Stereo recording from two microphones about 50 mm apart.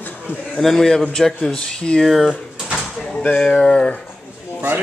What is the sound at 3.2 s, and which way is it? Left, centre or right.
Speech, centre.